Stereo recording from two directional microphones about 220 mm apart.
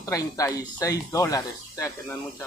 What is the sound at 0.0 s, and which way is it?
Speech, 15° left (ahead or behind).